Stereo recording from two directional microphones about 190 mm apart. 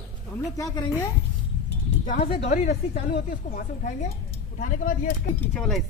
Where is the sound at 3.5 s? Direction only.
45° left (ahead or behind).